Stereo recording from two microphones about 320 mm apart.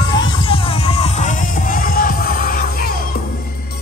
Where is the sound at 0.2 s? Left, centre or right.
Centre.